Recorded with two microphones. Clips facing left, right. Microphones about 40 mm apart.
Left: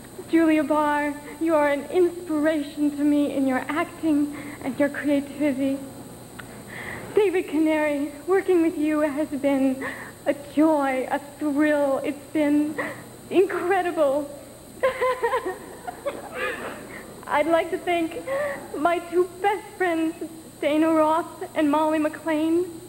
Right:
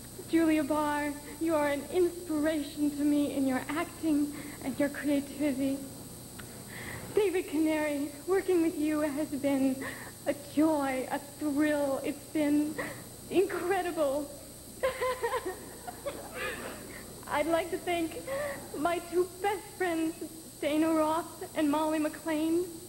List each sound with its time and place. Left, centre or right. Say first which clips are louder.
0.3 s speech: left 7 dB; left
6.8 s speech: left 8 dB; left